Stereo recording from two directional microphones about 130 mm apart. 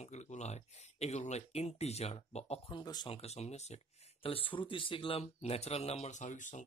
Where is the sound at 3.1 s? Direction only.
55° left (ahead or behind).